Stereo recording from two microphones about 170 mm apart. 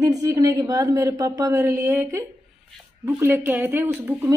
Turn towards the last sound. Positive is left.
turn(degrees=-15)  # may be behind; listen again after turning